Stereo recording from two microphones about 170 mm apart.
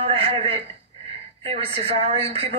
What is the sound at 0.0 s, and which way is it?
A woman's voice, 35° right (ahead or behind).